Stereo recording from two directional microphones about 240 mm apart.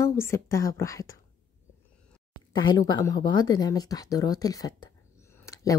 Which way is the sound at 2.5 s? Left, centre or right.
Centre.